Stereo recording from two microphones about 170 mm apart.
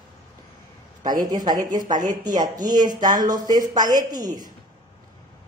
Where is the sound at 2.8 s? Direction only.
50° right (ahead or behind).